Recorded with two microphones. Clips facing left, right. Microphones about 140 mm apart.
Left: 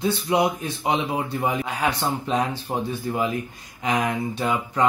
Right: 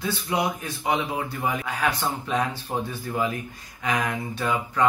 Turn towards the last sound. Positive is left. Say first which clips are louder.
# left 2 dB
turn(degrees=20)  # may be behind; listen again after turning